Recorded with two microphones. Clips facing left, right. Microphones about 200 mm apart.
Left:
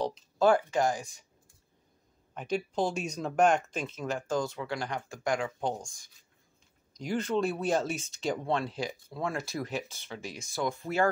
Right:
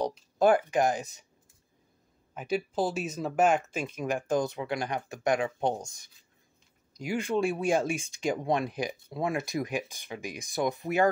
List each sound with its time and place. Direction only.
0.0 s speech: 15° right (ahead or behind)
2.3 s speech: 5° right (ahead or behind); by 6.0 s 20° right (ahead or behind)
6.9 s speech: 10° right (ahead or behind)